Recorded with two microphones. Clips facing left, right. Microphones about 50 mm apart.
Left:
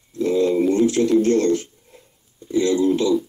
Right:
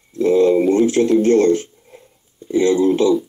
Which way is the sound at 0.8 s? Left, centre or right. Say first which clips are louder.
Right 2 dB; right.